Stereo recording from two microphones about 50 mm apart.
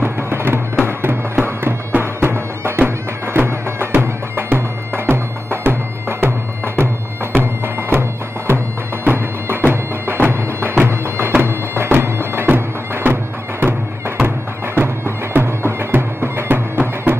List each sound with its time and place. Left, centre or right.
0.0 s music: right
11.4 s bagpipes: right
14.8 s music: right